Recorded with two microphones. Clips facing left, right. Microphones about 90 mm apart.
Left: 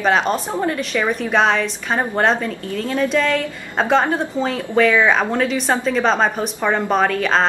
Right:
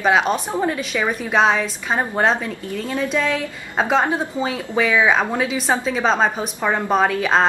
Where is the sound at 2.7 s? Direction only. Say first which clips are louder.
Left 3 dB; 15° right (ahead or behind).